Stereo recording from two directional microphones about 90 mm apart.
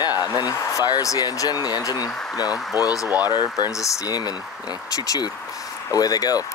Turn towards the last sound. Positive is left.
turn(degrees=45)  # may be behind; listen again after turning